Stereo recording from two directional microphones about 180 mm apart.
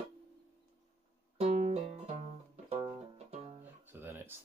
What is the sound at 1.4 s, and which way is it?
Music, 40° right (ahead or behind).